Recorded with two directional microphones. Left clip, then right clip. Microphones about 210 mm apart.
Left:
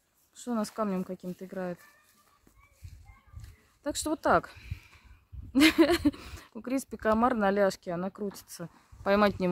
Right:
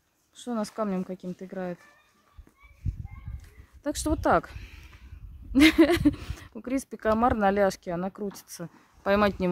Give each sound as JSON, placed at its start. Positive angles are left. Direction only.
{"t": 0.4, "sound": "speech", "side_deg": 10}
{"t": 2.8, "sound": "a sound", "side_deg": 55}
{"t": 3.8, "sound": "speech", "side_deg": 5}